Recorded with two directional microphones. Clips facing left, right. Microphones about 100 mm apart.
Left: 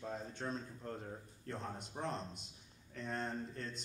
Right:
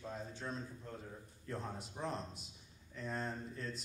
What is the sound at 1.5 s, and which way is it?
A man's voice, centre (ahead or behind).